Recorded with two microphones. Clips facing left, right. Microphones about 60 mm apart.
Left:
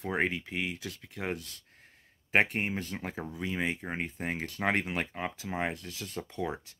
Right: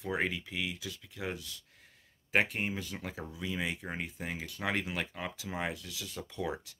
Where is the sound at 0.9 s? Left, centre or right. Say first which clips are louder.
Left 3 dB; left.